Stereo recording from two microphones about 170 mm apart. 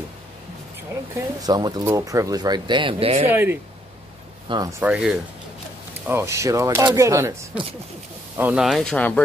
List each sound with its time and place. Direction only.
1.1 s speech: 25° right (ahead or behind)
3.3 s speech: 15° right (ahead or behind)
4.9 s speech: 5° right (ahead or behind)
8.4 s speech: 5° right (ahead or behind)